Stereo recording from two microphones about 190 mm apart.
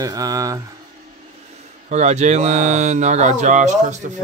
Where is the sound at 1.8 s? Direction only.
35° right (ahead or behind).